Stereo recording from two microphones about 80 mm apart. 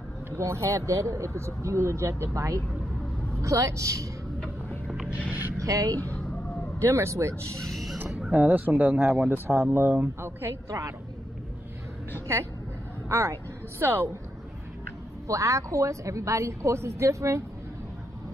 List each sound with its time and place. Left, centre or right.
0.4 s speech: right
4.8 s a sound: centre
5.6 s speech: right
7.6 s a sound: centre
8.1 s speech: centre
8.4 s speech: right
12.3 s speech: right
15.2 s speech: right